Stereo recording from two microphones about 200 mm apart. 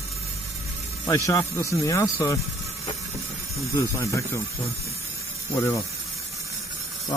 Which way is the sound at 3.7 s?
15° left (ahead or behind).